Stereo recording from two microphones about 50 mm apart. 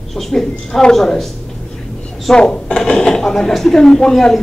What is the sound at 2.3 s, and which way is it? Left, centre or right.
A man's voice, centre.